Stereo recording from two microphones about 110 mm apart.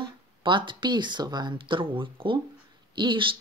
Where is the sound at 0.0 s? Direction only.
45° right (ahead or behind).